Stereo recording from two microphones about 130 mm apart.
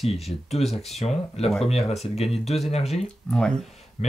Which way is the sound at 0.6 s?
Centre (ahead or behind).